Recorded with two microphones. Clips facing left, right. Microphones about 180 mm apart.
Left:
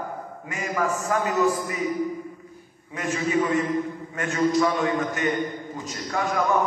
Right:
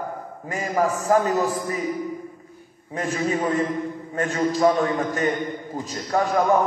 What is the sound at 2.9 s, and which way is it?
A man's voice, 35° right (ahead or behind).